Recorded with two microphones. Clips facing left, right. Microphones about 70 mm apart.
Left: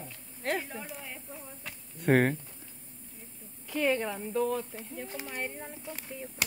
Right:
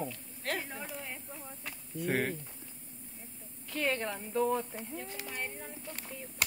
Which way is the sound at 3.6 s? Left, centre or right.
Centre.